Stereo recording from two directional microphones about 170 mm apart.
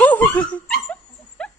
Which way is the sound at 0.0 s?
10° left (ahead or behind).